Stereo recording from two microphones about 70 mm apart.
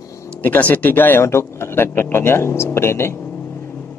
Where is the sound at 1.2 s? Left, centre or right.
Left.